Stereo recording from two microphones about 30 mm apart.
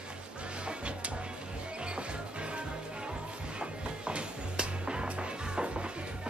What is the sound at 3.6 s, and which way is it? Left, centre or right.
Music, right.